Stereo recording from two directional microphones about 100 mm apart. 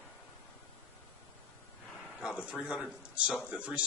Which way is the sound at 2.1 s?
10° right (ahead or behind).